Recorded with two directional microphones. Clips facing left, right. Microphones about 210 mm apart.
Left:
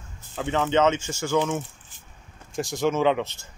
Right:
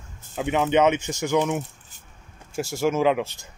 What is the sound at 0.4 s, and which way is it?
Speech, 15° right (ahead or behind).